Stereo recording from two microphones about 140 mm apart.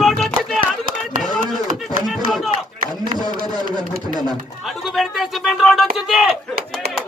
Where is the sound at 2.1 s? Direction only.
Centre (ahead or behind).